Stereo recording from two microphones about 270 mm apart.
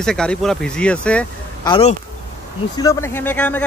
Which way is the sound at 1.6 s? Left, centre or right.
Centre.